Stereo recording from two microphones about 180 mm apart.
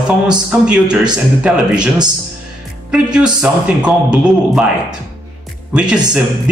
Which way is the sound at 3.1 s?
5° right (ahead or behind).